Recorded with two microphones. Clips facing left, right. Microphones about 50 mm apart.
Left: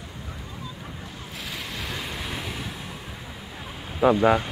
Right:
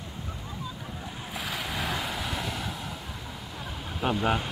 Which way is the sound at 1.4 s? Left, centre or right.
Centre.